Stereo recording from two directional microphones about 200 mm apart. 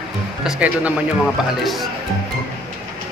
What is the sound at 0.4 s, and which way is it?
Speech, 5° right (ahead or behind).